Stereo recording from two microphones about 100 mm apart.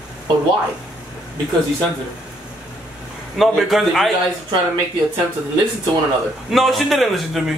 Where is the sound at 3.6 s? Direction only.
Centre (ahead or behind).